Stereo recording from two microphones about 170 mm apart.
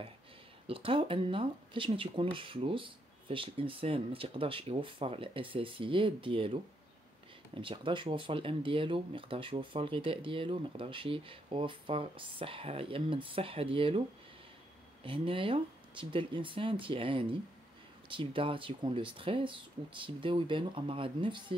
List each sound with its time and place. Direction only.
0.7 s speech: 30° right (ahead or behind)
15.0 s speech: 30° right (ahead or behind)